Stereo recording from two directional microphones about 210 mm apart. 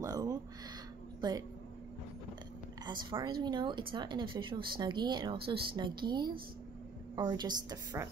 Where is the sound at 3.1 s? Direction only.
20° right (ahead or behind).